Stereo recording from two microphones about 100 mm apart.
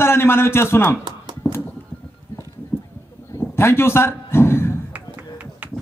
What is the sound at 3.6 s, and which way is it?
A man's voice, 25° left (ahead or behind).